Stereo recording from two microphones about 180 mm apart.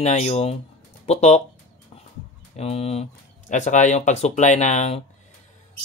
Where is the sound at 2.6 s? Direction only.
35° left (ahead or behind).